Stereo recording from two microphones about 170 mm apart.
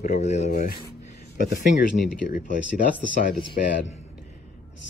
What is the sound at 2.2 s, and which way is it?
Speech, 50° left (ahead or behind).